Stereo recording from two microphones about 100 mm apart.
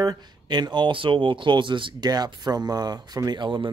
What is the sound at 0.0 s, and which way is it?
Speech, 45° right (ahead or behind).